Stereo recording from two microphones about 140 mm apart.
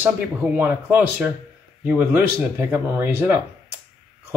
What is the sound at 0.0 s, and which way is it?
Speech, 15° right (ahead or behind).